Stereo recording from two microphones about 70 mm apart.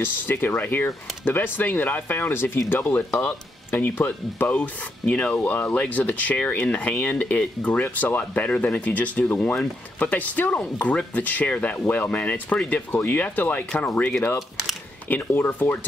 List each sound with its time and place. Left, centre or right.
0.0 s speech: left
15.0 s speech: left